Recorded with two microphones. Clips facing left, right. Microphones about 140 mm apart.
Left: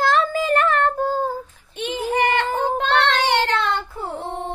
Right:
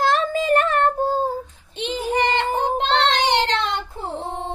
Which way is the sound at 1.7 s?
20° right (ahead or behind).